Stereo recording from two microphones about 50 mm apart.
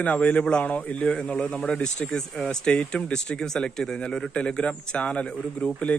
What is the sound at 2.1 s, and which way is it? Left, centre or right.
Speech, centre.